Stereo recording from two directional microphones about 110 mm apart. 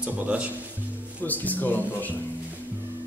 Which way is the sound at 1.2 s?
15° left (ahead or behind).